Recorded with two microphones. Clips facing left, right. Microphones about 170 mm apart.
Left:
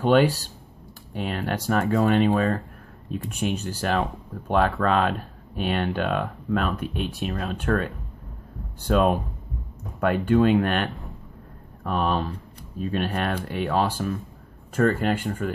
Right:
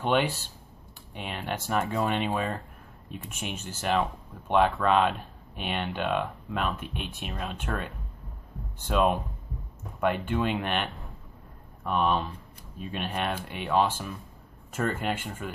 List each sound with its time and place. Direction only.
0.0 s speech: 40° left (ahead or behind)